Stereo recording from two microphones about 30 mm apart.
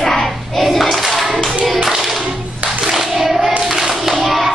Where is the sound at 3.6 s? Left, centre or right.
Centre.